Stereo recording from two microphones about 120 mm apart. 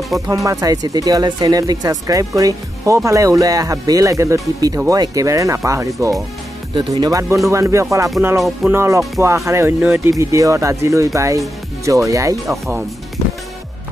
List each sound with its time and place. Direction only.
0.3 s speech: 30° right (ahead or behind)
6.7 s speech: 40° right (ahead or behind)